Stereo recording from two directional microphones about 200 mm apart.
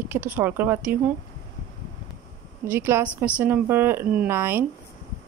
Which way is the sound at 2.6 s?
10° right (ahead or behind).